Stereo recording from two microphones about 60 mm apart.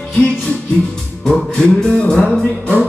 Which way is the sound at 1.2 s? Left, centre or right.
Centre.